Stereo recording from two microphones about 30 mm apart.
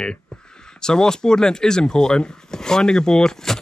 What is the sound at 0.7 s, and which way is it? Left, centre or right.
Speech, left.